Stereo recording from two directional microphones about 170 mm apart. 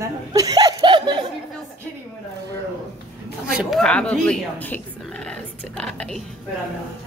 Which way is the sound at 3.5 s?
Centre (ahead or behind).